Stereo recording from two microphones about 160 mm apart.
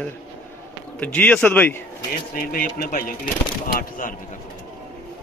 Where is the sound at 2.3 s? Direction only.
65° left (ahead or behind).